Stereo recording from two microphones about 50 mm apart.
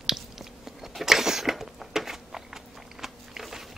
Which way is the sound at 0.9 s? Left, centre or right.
Centre.